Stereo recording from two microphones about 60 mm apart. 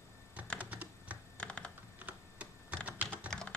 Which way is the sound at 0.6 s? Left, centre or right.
Right.